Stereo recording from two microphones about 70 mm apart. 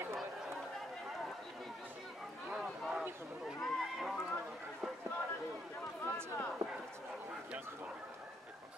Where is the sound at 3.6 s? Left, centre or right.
Centre.